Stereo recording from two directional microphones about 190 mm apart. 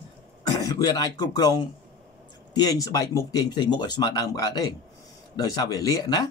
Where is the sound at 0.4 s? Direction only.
20° left (ahead or behind).